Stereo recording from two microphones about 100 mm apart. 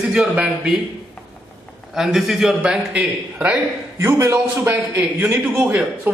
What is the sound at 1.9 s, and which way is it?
A man's voice, 5° right (ahead or behind).